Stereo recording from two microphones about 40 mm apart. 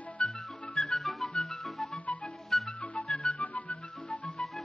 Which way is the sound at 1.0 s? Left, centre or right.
Centre.